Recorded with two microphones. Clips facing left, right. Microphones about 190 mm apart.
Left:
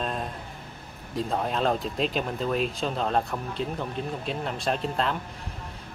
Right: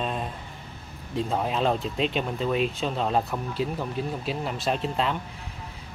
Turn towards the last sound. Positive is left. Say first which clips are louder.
# right 1 dB
turn(degrees=0)  # may be behind; listen again after turning